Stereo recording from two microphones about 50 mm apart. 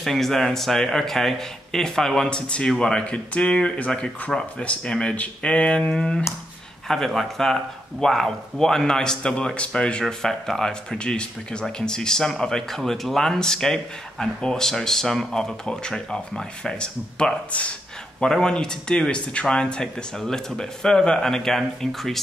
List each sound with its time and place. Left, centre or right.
0.0 s speech: centre
2.2 s speech: centre
18.2 s speech: centre